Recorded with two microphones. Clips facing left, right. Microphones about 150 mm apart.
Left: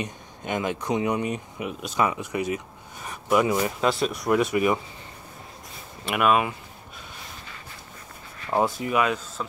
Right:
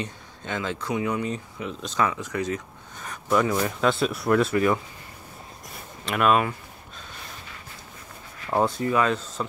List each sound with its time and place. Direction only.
0.0 s speech: 15° left (ahead or behind); by 4.2 s centre (ahead or behind)
4.3 s speech: 15° left (ahead or behind)
6.1 s speech: 5° left (ahead or behind)
8.5 s speech: 5° left (ahead or behind)
8.7 s speech: 15° left (ahead or behind)